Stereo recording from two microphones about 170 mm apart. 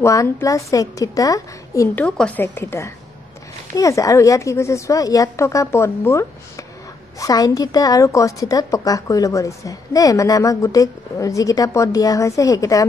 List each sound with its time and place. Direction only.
0.0 s a woman's voice: 20° left (ahead or behind)
2.0 s a woman's voice: 5° left (ahead or behind)